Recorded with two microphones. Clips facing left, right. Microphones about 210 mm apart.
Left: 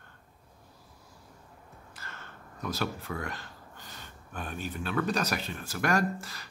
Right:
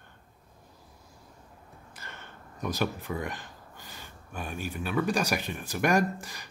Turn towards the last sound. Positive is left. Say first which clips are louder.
# right 2 dB
turn(degrees=-15)  # may be behind; listen again after turning